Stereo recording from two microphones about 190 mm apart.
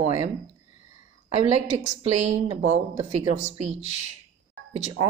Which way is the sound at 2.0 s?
35° right (ahead or behind).